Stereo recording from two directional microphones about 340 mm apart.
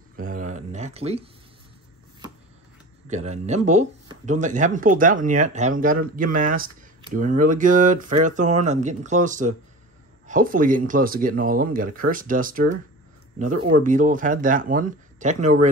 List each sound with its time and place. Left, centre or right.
0.1 s a sound: right
3.1 s speech: centre
13.8 s speech: right